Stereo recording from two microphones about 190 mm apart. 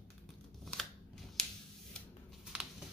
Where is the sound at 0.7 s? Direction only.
Centre (ahead or behind).